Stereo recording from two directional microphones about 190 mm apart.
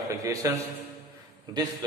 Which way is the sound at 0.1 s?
15° right (ahead or behind).